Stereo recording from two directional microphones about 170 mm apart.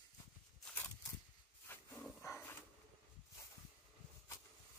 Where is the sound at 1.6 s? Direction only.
15° left (ahead or behind).